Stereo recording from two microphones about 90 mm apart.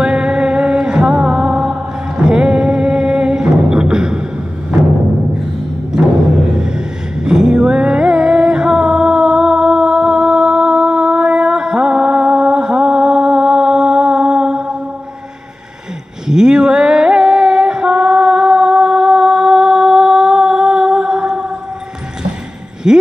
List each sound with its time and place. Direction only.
0.0 s music: 10° right (ahead or behind)
6.6 s music: 5° right (ahead or behind)
16.3 s female singing: 5° right (ahead or behind)
22.8 s a sound: 10° right (ahead or behind)